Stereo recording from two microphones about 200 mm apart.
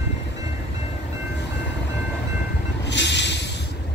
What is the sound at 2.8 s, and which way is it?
Train, 60° left (ahead or behind).